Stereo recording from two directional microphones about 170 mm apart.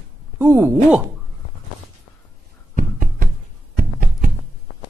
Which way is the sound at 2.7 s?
55° right (ahead or behind).